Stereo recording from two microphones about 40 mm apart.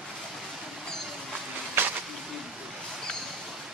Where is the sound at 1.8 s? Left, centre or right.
Right.